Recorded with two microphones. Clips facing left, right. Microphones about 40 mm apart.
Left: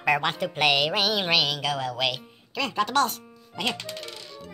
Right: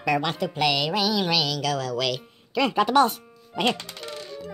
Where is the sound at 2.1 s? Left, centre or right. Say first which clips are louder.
Right 5 dB; centre.